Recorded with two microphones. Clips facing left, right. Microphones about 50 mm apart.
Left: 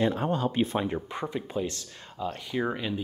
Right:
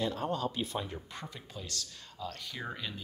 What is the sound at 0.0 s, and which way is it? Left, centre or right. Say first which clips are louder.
Speech: left 6 dB; left.